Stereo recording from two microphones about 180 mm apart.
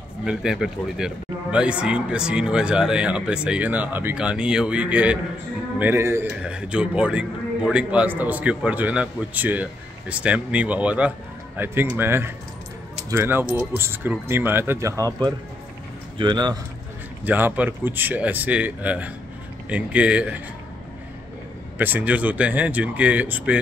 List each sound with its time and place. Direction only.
0.2 s a man's voice: 5° right (ahead or behind); by 16.5 s 25° right (ahead or behind)
17.2 s a man's voice: 10° right (ahead or behind)
21.7 s a man's voice: 10° right (ahead or behind)